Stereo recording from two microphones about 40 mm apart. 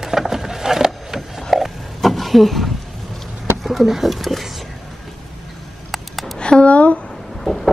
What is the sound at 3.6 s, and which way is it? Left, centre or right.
Speech, centre.